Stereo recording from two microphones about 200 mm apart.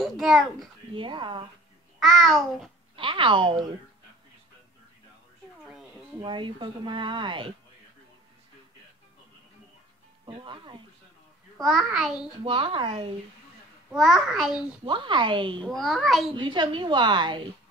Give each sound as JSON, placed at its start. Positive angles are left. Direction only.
{"t": 0.0, "sound": "a child's voice", "side_deg": 0}
{"t": 0.9, "sound": "speech", "side_deg": -25}
{"t": 2.0, "sound": "a child's voice", "side_deg": 0}
{"t": 3.0, "sound": "speech", "side_deg": -25}
{"t": 6.2, "sound": "speech", "side_deg": -25}
{"t": 10.2, "sound": "speech", "side_deg": -25}
{"t": 11.5, "sound": "a child's voice", "side_deg": 0}
{"t": 12.4, "sound": "speech", "side_deg": -25}
{"t": 13.9, "sound": "a child's voice", "side_deg": 0}
{"t": 14.9, "sound": "speech", "side_deg": -25}
{"t": 15.6, "sound": "a child's voice", "side_deg": 0}
{"t": 16.3, "sound": "speech", "side_deg": -25}